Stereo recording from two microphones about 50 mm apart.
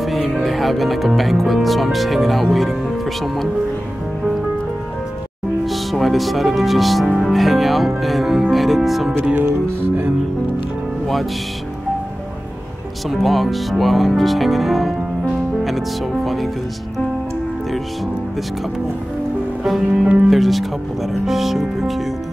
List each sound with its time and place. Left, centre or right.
0.0 s speech: centre
5.7 s speech: centre
9.3 s music: right
13.1 s speech: centre
20.2 s speech: centre